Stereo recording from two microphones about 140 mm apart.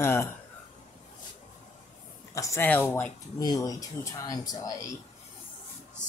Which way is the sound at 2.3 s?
25° left (ahead or behind).